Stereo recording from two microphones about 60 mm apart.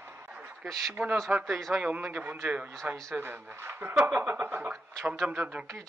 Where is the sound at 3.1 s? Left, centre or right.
Right.